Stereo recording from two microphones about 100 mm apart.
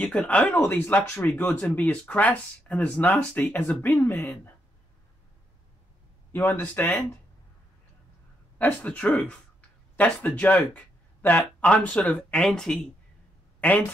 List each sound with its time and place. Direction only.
0.0 s speech: 10° left (ahead or behind)
6.3 s speech: 20° left (ahead or behind)
8.5 s speech: 15° left (ahead or behind)
13.6 s speech: 15° left (ahead or behind)